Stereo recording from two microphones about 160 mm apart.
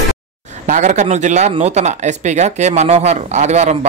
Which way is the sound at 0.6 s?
50° right (ahead or behind).